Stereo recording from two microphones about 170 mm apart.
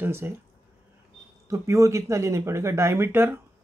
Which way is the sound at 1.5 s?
20° right (ahead or behind).